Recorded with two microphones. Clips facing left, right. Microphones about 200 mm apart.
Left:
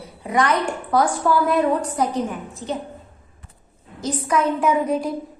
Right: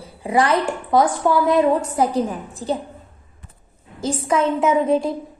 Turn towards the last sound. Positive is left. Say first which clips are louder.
# right 3 dB
turn(degrees=-25)  # may be behind; listen again after turning